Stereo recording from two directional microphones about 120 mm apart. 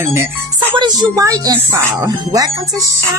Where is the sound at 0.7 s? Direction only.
35° right (ahead or behind).